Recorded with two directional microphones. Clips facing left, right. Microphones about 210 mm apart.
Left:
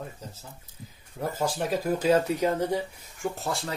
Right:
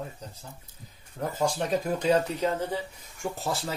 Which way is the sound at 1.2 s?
5° left (ahead or behind).